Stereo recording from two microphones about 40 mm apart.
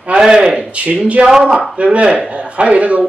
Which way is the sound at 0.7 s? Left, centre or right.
Right.